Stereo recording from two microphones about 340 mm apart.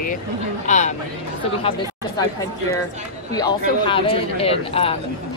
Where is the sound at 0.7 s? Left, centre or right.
Left.